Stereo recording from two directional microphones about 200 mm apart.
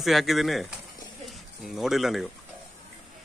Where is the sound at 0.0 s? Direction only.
Centre (ahead or behind).